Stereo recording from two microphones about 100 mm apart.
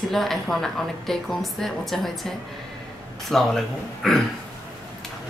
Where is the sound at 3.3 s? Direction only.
5° left (ahead or behind).